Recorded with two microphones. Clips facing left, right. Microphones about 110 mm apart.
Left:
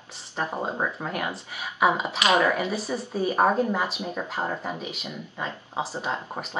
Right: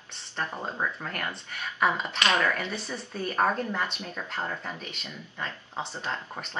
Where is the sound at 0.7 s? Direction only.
20° left (ahead or behind).